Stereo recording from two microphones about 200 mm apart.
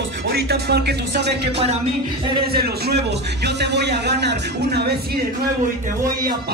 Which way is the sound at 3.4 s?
55° right (ahead or behind).